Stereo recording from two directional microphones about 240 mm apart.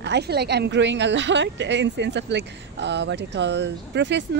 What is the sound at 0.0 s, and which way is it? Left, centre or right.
A woman's voice, right.